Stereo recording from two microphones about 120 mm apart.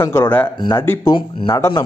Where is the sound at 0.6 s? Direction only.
40° left (ahead or behind).